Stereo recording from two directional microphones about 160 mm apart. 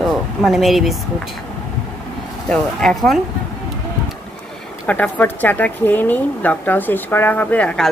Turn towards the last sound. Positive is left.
turn(degrees=5)  # may be behind; listen again after turning